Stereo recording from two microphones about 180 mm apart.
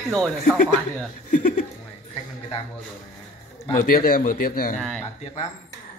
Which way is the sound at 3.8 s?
50° left (ahead or behind).